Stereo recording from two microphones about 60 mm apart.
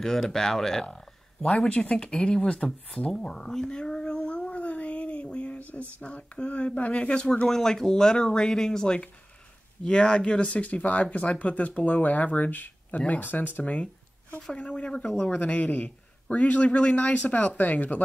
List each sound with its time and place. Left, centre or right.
0.0 s speech: centre; by 13.7 s left
14.4 s speech: centre